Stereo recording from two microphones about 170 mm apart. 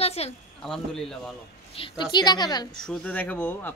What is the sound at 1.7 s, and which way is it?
Speech, 30° left (ahead or behind).